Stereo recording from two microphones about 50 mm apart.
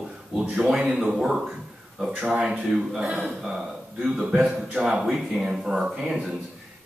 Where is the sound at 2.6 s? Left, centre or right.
Centre.